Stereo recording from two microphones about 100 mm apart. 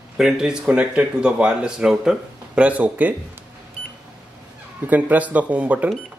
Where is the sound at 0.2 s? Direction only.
5° right (ahead or behind).